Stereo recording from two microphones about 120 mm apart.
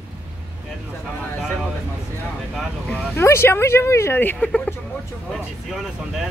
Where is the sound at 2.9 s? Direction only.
20° left (ahead or behind).